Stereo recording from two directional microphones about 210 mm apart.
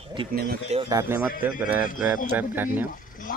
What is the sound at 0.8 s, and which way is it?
A man's voice, 15° right (ahead or behind).